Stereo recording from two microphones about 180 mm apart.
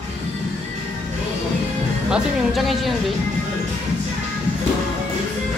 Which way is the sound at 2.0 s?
Centre (ahead or behind).